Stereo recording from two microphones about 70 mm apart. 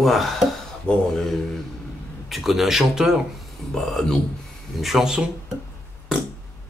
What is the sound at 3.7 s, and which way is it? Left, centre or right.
Speech, centre.